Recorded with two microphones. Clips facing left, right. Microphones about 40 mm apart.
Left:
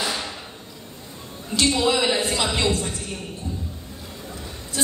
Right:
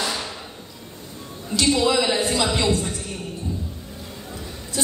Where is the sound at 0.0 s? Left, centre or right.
Centre.